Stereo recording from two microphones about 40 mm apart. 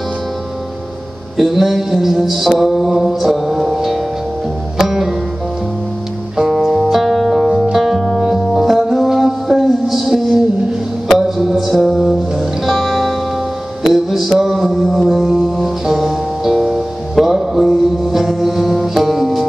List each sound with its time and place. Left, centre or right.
1.3 s a man's voice: centre
2.6 s music: centre
6.3 s music: centre
14.4 s mantra: centre
14.9 s music: centre
15.6 s music: centre